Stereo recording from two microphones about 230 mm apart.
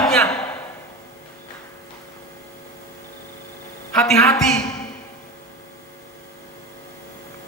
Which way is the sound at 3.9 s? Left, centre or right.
Centre.